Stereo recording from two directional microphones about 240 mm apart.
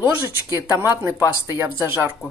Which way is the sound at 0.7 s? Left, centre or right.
Centre.